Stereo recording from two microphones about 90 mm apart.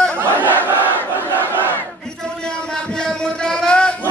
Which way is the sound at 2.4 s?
10° left (ahead or behind).